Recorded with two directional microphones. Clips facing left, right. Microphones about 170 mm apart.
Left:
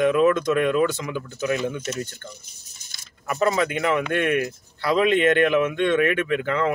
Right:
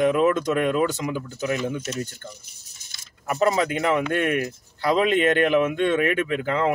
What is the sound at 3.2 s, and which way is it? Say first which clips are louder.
Speech: right 1 dB; 35° right (ahead or behind).